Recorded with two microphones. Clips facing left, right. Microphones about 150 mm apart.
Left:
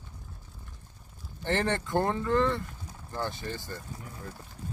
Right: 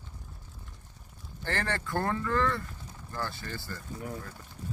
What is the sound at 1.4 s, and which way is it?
Speech, 20° left (ahead or behind).